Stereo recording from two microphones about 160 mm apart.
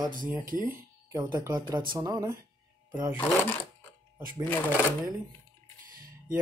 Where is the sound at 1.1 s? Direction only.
25° right (ahead or behind).